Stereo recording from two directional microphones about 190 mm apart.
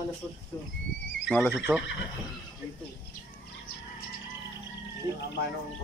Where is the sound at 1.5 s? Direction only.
5° right (ahead or behind).